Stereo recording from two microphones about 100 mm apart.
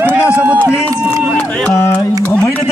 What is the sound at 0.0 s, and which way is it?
Run, 15° right (ahead or behind).